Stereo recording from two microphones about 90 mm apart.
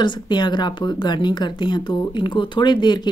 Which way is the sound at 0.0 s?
55° left (ahead or behind).